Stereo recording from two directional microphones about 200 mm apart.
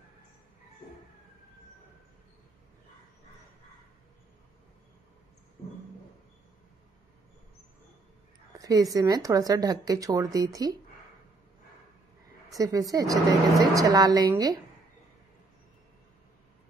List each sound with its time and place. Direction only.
8.5 s speech: 15° right (ahead or behind)
12.4 s speech: 15° right (ahead or behind)